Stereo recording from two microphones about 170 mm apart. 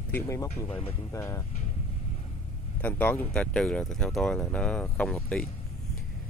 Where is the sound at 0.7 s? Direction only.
35° left (ahead or behind).